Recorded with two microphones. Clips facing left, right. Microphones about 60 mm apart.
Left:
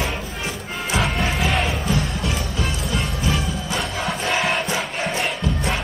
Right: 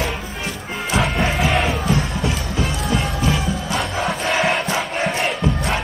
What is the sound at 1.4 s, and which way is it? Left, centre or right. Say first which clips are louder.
Crowd: right 3 dB; centre.